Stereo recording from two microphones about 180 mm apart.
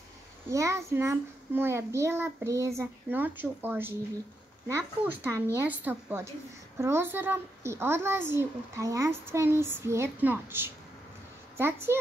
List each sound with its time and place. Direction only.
0.5 s a child's voice: 15° right (ahead or behind)